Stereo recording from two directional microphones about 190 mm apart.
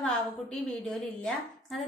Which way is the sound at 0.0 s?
5° left (ahead or behind).